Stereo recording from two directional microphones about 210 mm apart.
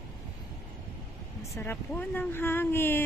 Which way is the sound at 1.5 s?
10° left (ahead or behind).